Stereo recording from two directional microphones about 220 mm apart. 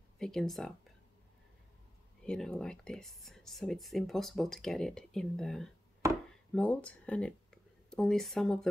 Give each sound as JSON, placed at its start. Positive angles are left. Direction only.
{"t": 0.2, "sound": "speech", "side_deg": 0}
{"t": 2.2, "sound": "speech", "side_deg": 5}